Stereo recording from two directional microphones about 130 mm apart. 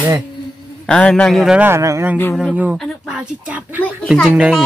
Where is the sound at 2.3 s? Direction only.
5° right (ahead or behind).